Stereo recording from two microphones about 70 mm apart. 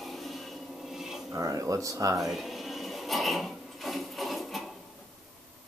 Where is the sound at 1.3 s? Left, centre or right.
Right.